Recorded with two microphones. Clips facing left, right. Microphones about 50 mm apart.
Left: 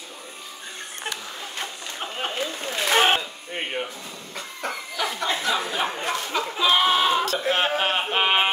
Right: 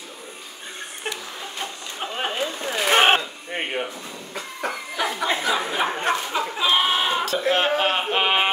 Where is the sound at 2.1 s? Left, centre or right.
Right.